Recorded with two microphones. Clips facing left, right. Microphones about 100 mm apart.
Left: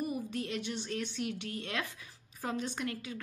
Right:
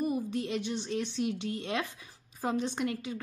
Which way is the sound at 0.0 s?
25° right (ahead or behind).